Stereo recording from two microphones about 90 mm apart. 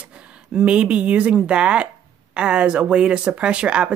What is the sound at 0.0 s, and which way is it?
Speech, 10° right (ahead or behind).